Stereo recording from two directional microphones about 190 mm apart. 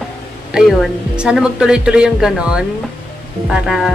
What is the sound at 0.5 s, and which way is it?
Speech, centre (ahead or behind).